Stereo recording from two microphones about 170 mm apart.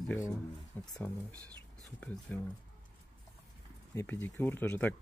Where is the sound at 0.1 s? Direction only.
10° left (ahead or behind).